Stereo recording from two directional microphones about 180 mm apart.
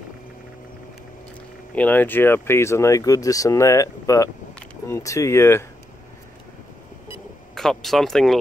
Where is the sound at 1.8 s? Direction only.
10° left (ahead or behind).